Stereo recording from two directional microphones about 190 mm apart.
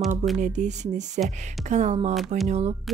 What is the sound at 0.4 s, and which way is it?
Speech, 40° right (ahead or behind).